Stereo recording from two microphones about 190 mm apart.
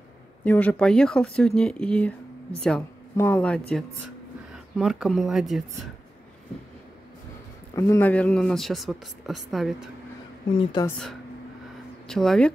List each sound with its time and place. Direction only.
0.5 s a woman's voice: 5° left (ahead or behind)
7.7 s speech: 15° left (ahead or behind); by 9.8 s centre (ahead or behind)
10.6 s speech: 25° left (ahead or behind)
12.1 s speech: centre (ahead or behind)